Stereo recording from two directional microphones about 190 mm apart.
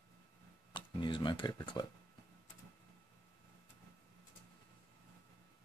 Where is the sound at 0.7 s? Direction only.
25° left (ahead or behind).